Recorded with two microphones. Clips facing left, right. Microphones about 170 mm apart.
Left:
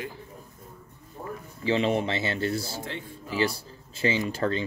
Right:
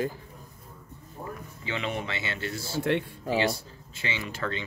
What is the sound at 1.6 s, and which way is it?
Speech, 35° left (ahead or behind).